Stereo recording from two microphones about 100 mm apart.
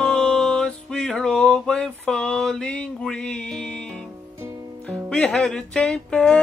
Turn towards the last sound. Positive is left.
turn(degrees=5)  # may be behind; listen again after turning